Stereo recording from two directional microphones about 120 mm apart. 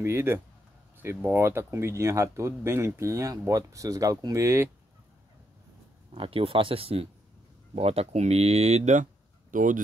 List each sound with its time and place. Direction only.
0.0 s speech: 20° right (ahead or behind)
6.1 s speech: 50° right (ahead or behind); by 9.0 s 75° right (ahead or behind)
9.5 s speech: 90° right